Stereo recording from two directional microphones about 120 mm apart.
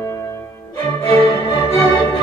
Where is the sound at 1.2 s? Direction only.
45° left (ahead or behind).